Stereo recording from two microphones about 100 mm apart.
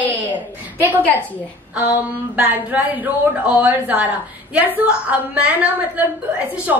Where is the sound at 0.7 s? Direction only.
20° right (ahead or behind).